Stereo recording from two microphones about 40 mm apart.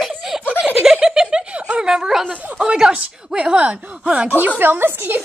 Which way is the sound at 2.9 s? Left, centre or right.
Right.